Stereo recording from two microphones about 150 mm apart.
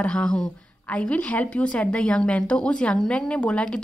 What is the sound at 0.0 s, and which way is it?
A woman's voice, 5° left (ahead or behind).